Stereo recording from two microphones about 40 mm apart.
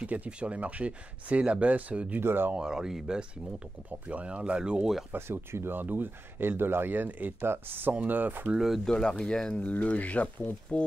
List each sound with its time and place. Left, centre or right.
0.0 s speech: right
2.1 s speech: right
2.5 s speech: centre
4.1 s speech: right
5.1 s speech: right
5.8 s speech: right
7.3 s speech: right
8.1 s speech: right
8.5 s speech: centre
8.8 s speech: centre
9.6 s speech: left